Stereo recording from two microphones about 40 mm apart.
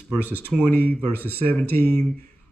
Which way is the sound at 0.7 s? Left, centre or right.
Left.